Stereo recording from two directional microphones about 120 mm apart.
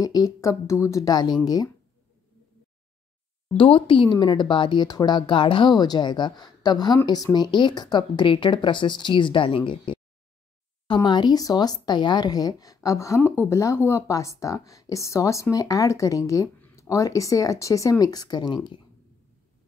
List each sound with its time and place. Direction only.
0.0 s speech: 30° left (ahead or behind)
3.5 s speech: 45° left (ahead or behind)
11.0 s a woman's voice: 40° left (ahead or behind)